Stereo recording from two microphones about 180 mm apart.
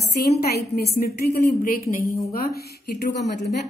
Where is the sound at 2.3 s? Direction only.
60° left (ahead or behind).